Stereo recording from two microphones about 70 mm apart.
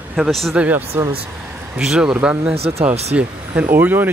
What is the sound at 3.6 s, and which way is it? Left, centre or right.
Speech, right.